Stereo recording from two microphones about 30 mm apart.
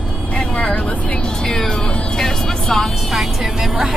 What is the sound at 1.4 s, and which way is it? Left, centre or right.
Speech, centre.